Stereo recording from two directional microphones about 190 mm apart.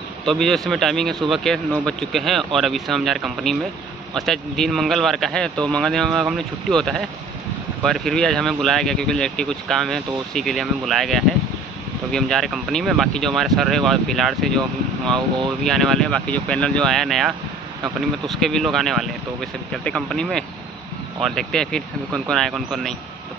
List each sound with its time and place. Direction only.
0.2 s speech: centre (ahead or behind)
15.1 s speech: 25° right (ahead or behind)
15.6 s speech: centre (ahead or behind)